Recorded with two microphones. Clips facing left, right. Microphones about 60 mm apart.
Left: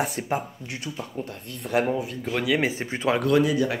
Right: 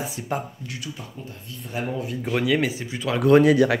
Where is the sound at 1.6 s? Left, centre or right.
Left.